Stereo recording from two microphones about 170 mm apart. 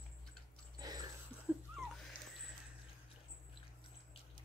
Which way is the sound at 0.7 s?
25° right (ahead or behind).